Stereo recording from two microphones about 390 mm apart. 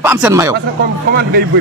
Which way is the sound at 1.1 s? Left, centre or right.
Right.